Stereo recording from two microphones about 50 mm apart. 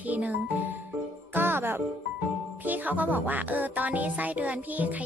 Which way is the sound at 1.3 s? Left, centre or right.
Right.